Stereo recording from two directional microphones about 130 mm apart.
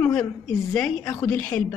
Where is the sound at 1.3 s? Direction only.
10° left (ahead or behind).